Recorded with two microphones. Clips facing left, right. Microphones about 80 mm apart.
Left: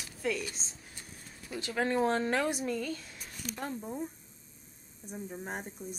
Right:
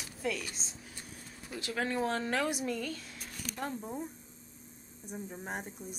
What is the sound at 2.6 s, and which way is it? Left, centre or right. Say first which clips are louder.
A woman's voice: left 2 dB; centre.